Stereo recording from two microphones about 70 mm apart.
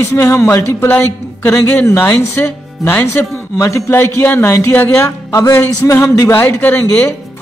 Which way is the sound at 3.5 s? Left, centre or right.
Left.